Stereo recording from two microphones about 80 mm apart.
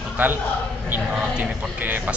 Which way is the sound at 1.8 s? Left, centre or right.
Right.